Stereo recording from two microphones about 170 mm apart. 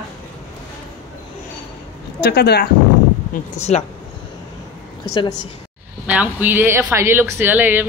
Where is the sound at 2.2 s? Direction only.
70° left (ahead or behind).